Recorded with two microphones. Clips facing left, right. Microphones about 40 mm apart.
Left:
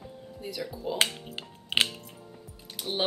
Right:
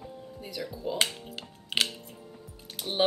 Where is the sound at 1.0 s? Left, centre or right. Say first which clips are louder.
Left 4 dB; left.